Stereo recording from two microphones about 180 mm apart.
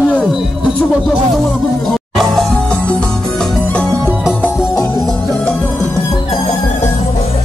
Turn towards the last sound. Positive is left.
turn(degrees=0)  # may be behind; listen again after turning